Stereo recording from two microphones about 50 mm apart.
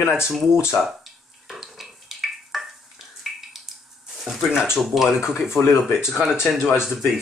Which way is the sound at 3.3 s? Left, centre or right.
Centre.